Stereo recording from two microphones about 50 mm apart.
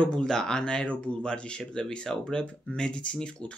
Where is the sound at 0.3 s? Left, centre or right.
Centre.